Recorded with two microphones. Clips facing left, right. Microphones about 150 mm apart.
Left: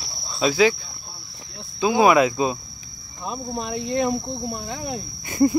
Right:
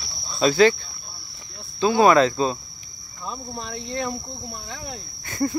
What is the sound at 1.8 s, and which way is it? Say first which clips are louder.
Speech: even; 10° left (ahead or behind).